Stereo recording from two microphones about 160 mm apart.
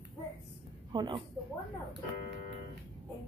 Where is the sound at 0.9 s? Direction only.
30° right (ahead or behind).